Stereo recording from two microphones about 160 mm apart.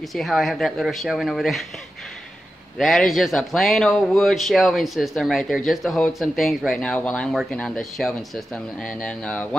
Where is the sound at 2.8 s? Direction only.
Centre (ahead or behind).